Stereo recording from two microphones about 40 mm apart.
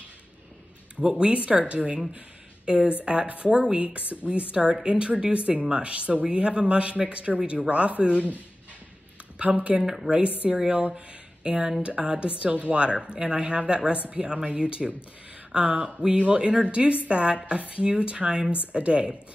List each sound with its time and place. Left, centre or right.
1.1 s a woman's voice: right
9.4 s speech: right
9.8 s a woman's voice: centre
10.1 s a woman's voice: right